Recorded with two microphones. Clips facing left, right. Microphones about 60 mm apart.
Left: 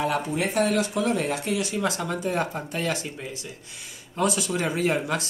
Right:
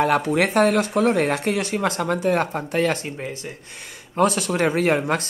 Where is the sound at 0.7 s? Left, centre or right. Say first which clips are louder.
Right 5 dB; right.